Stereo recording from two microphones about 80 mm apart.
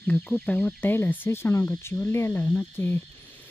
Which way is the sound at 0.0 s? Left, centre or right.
Centre.